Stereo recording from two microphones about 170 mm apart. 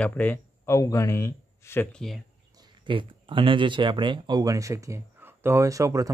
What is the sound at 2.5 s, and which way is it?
Speech, 25° right (ahead or behind).